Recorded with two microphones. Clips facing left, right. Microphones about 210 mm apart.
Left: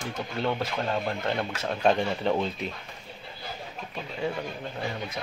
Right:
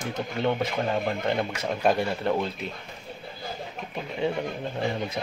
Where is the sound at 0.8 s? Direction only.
15° right (ahead or behind).